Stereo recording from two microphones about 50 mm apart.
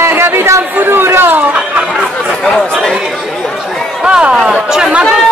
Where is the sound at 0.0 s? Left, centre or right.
Right.